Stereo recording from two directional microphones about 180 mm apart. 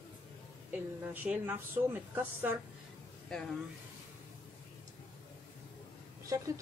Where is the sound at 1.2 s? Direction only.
10° right (ahead or behind).